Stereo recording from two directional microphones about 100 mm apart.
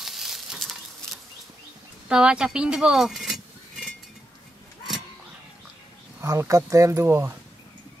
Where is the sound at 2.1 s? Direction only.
10° right (ahead or behind).